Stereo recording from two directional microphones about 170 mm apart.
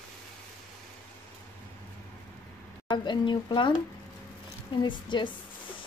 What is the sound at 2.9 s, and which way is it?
Speech, 25° left (ahead or behind).